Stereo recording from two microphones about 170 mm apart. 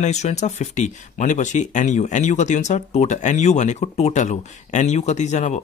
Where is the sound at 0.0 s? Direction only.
40° left (ahead or behind).